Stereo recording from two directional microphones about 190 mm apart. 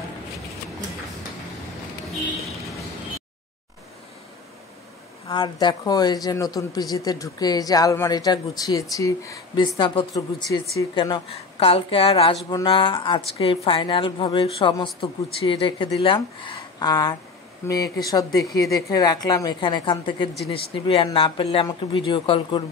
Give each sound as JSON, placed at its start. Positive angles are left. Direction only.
{"t": 5.3, "sound": "speech", "side_deg": 25}